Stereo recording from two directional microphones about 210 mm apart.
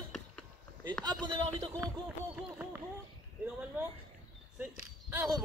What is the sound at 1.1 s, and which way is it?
Speech, 20° right (ahead or behind).